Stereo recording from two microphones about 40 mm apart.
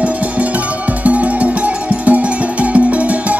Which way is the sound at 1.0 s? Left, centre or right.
Right.